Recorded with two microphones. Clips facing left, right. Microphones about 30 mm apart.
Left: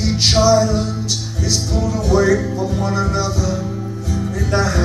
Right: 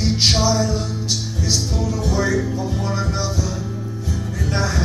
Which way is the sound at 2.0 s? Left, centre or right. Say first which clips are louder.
Left 6 dB; centre.